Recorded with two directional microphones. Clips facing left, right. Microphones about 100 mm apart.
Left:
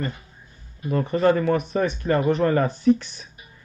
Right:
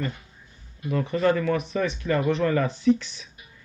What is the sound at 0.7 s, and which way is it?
Speech, 40° left (ahead or behind).